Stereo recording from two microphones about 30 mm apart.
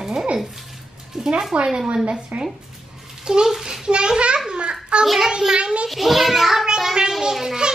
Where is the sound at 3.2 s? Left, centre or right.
Right.